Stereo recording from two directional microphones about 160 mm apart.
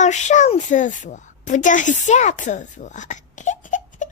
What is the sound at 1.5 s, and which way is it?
A woman's voice, 50° left (ahead or behind).